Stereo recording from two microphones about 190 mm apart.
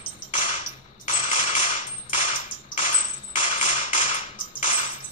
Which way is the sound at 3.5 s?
40° left (ahead or behind).